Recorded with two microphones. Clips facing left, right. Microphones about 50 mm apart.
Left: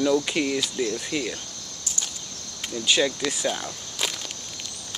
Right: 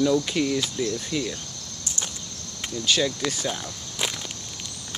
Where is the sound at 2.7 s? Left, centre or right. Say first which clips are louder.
Left 1 dB; centre.